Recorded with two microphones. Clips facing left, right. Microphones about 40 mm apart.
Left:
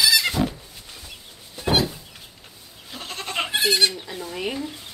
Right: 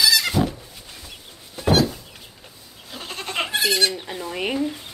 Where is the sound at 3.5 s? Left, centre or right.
Left.